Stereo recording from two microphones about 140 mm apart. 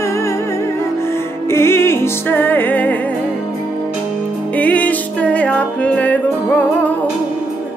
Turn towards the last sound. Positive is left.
turn(degrees=10)  # may be behind; listen again after turning